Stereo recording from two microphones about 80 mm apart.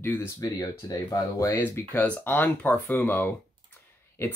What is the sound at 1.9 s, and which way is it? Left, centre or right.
Speech, left.